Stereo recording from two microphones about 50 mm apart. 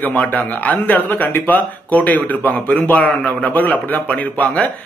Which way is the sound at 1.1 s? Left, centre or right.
Left.